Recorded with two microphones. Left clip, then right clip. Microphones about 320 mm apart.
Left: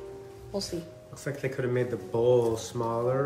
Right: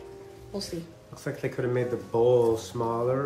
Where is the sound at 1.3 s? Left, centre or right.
Centre.